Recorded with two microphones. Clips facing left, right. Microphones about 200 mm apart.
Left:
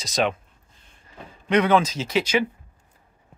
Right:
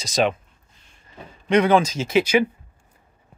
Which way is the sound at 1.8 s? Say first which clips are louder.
Right 2 dB; 45° right (ahead or behind).